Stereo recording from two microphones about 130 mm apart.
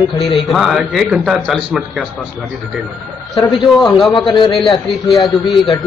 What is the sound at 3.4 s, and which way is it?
Speech, 35° left (ahead or behind).